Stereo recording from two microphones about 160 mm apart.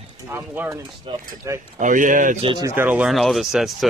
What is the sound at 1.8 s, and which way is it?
Speech, 55° right (ahead or behind).